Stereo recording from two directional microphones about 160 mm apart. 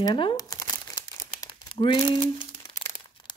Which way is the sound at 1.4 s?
30° left (ahead or behind).